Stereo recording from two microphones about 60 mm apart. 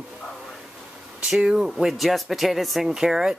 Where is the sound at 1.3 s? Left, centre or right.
Centre.